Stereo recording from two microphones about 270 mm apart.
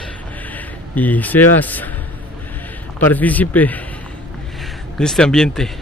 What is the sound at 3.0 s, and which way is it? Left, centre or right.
Speech, centre.